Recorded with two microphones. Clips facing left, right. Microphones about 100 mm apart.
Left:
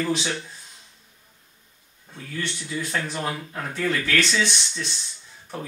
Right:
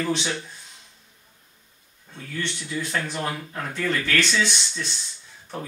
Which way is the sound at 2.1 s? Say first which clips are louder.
Even; 5° left (ahead or behind).